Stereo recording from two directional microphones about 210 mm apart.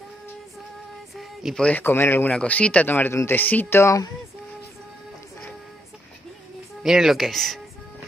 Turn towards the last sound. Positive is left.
turn(degrees=0)  # may be behind; listen again after turning